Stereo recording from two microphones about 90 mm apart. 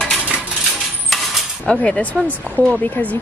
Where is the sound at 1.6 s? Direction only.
10° left (ahead or behind).